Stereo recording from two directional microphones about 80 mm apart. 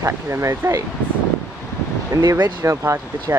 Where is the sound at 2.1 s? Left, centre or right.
Right.